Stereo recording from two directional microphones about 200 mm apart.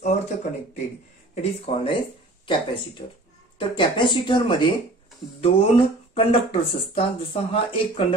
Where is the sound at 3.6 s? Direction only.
25° left (ahead or behind).